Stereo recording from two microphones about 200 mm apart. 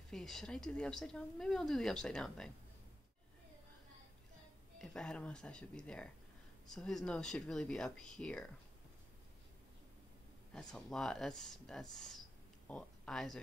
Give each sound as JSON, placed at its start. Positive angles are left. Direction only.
{"t": 0.1, "sound": "speech", "side_deg": 0}
{"t": 4.7, "sound": "speech", "side_deg": 5}
{"t": 10.5, "sound": "speech", "side_deg": 5}